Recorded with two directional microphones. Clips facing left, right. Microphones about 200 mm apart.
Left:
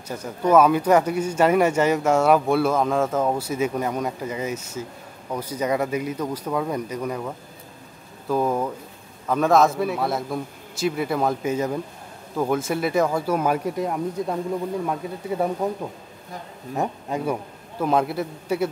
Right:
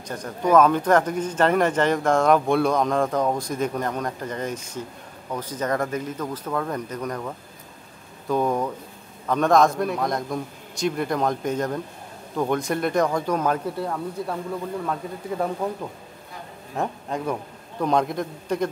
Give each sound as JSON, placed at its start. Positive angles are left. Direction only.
{"t": 0.1, "sound": "a man's voice", "side_deg": 10}